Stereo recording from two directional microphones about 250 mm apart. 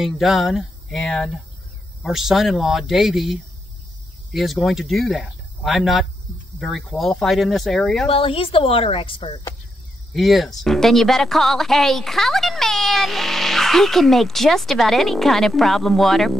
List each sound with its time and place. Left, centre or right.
0.0 s speech: centre
8.1 s speech: left
10.1 s speech: centre